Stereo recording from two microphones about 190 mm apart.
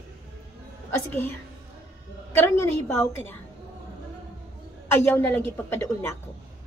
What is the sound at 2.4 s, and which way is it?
Speech, 10° left (ahead or behind).